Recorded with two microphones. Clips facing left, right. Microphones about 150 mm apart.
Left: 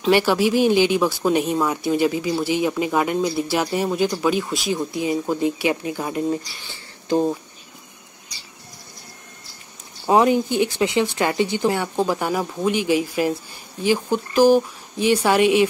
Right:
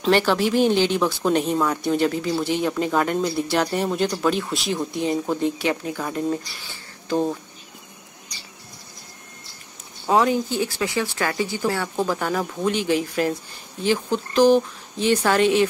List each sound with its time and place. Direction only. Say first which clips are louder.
0.0 s speech: left 2 dB; 10° left (ahead or behind)
10.0 s speech: left 3 dB; 15° left (ahead or behind)